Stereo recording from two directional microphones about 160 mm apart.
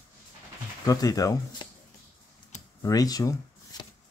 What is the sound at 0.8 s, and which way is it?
Speech, 20° left (ahead or behind).